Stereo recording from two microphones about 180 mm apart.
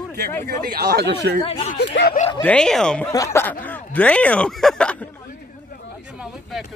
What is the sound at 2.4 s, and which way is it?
Speech, 5° left (ahead or behind).